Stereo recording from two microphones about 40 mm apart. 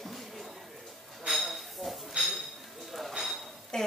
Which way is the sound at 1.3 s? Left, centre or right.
Centre.